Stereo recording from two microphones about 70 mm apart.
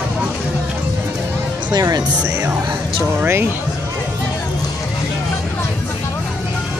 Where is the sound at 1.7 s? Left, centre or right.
Right.